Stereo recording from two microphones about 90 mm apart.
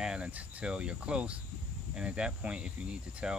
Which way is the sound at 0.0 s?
10° right (ahead or behind).